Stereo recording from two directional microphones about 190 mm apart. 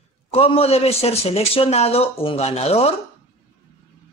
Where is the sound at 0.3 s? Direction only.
30° left (ahead or behind).